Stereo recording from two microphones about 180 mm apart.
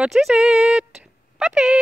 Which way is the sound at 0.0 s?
Centre (ahead or behind).